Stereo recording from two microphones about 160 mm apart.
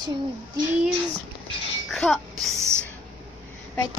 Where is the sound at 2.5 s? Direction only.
20° right (ahead or behind).